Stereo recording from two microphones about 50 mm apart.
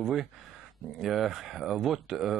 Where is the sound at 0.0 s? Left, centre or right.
Centre.